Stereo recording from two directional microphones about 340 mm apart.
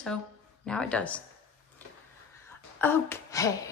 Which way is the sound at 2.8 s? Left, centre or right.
Centre.